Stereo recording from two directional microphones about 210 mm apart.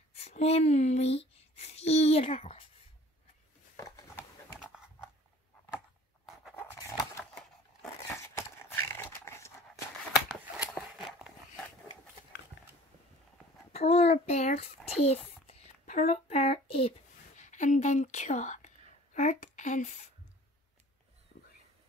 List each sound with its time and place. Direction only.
0.1 s speech: 30° left (ahead or behind)
4.6 s dog: 5° right (ahead or behind)
6.5 s scissors: 10° left (ahead or behind)
8.2 s dog: 10° left (ahead or behind)
10.7 s a sound: centre (ahead or behind)
13.7 s a child's voice: 30° left (ahead or behind)